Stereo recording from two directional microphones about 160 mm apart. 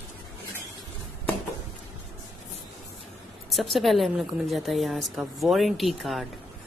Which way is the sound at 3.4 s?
Centre (ahead or behind).